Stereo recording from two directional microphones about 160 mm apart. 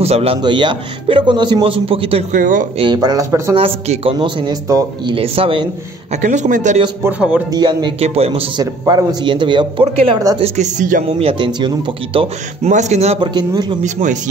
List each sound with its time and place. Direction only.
0.0 s a man's voice: 40° right (ahead or behind)
2.3 s speech: 55° right (ahead or behind)
2.8 s speech: 25° right (ahead or behind)
3.5 s a man's voice: 40° right (ahead or behind)
4.6 s speech: 20° right (ahead or behind)
5.1 s a man's voice: 35° right (ahead or behind)
6.2 s speech: 50° right (ahead or behind)
7.1 s speech: 10° right (ahead or behind)
7.5 s a man's voice: 30° right (ahead or behind); by 11.1 s 55° right (ahead or behind)
11.1 s a man's voice: 35° right (ahead or behind)
12.7 s speech: 45° right (ahead or behind)
13.2 s speech: 30° right (ahead or behind)